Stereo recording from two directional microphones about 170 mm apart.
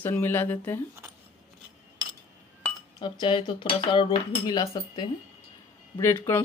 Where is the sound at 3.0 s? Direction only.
25° left (ahead or behind).